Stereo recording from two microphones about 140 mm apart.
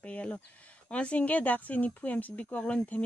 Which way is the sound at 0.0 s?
10° left (ahead or behind).